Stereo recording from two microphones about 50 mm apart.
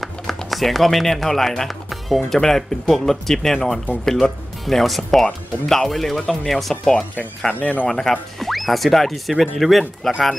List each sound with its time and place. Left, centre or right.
0.5 s speech: centre
7.5 s speech: left
7.9 s speech: centre